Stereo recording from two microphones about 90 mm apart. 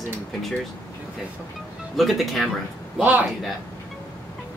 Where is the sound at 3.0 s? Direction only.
20° right (ahead or behind).